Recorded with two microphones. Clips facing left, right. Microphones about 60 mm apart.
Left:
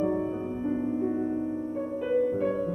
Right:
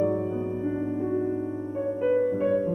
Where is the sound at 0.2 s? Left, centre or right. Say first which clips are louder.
Right 2 dB; centre.